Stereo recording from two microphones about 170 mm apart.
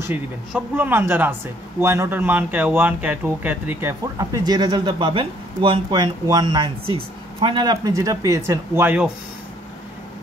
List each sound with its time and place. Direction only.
0.0 s speech: 10° right (ahead or behind)